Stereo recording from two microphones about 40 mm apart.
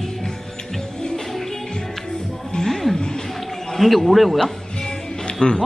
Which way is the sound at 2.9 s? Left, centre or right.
Left.